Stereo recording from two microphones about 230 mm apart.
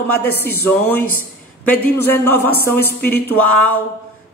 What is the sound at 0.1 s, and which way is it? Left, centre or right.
Speech, centre.